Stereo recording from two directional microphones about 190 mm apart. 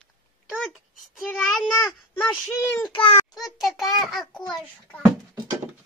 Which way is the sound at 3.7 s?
Centre (ahead or behind).